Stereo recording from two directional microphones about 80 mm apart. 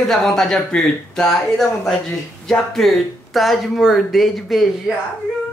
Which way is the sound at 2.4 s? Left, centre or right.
Centre.